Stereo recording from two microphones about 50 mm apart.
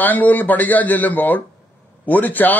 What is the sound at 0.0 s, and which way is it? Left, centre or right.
A man's voice, left.